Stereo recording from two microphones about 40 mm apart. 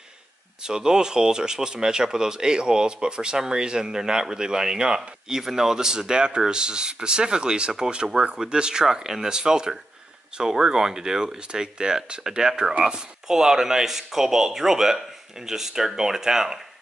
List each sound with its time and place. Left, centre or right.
0.6 s speech: centre